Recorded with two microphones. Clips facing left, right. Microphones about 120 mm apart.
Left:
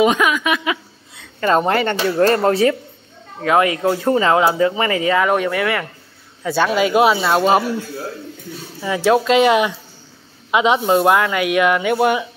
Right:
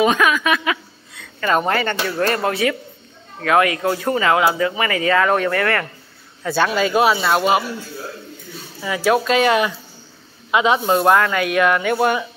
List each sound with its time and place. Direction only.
0.0 s speech: 20° left (ahead or behind)
1.1 s a woman's voice: 30° left (ahead or behind)
3.3 s speech: 20° left (ahead or behind)
8.8 s speech: 25° left (ahead or behind)